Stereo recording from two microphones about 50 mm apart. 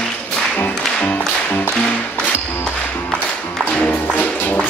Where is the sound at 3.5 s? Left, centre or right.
Left.